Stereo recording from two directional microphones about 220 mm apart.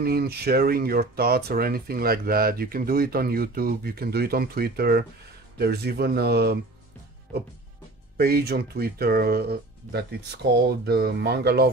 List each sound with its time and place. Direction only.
0.0 s speech: 45° right (ahead or behind)
8.2 s speech: 45° right (ahead or behind)